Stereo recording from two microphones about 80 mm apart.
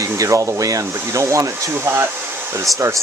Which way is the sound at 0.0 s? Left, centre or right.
Right.